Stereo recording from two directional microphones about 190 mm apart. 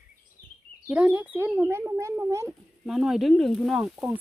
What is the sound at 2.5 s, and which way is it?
Speech, centre (ahead or behind).